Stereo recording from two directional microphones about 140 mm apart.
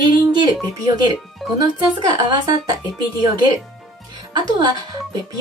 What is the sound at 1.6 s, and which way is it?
Speech, 30° right (ahead or behind).